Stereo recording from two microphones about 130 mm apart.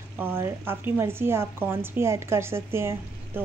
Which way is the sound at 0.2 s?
20° right (ahead or behind).